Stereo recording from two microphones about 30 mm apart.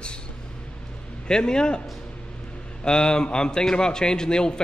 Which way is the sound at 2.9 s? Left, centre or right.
Left.